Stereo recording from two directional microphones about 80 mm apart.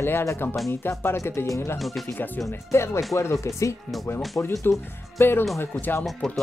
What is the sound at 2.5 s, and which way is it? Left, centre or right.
Speech, left.